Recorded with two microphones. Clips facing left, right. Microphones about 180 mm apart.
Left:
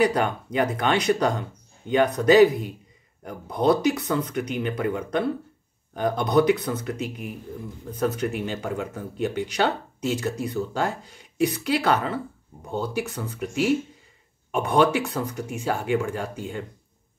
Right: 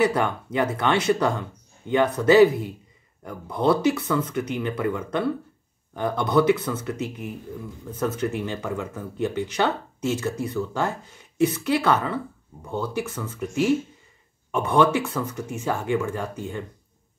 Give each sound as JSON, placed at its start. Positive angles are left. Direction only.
{"t": 0.0, "sound": "speech", "side_deg": 15}
{"t": 14.5, "sound": "speech", "side_deg": 15}